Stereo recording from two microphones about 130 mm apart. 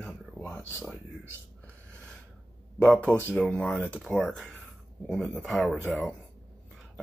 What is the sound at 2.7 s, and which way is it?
Speech, 5° left (ahead or behind).